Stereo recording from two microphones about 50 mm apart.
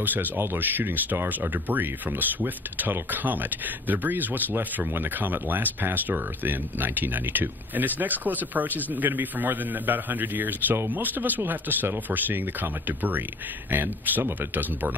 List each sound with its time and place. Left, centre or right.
0.0 s speech: right